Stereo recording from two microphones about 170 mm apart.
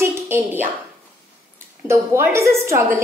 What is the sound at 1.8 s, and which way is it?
A woman's voice, 15° right (ahead or behind).